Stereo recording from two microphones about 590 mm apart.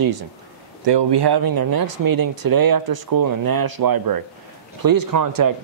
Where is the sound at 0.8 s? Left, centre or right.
Right.